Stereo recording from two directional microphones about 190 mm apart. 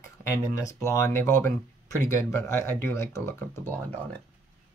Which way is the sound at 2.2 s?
15° left (ahead or behind).